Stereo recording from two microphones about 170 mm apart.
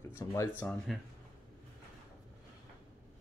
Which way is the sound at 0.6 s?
5° left (ahead or behind).